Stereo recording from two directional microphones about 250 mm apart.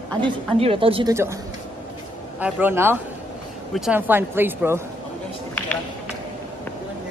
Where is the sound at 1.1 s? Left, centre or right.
Centre.